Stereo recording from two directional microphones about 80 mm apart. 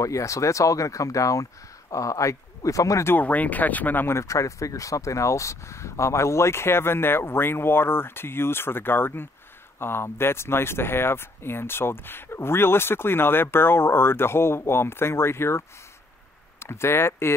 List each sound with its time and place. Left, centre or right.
0.0 s speech: left
3.1 s speech: left